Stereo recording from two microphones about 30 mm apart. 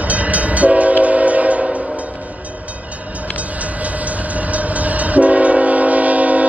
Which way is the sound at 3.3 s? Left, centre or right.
Right.